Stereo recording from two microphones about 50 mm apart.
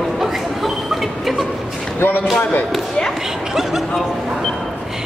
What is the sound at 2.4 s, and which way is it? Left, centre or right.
Speech, left.